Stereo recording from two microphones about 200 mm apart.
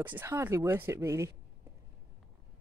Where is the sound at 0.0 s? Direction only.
10° right (ahead or behind).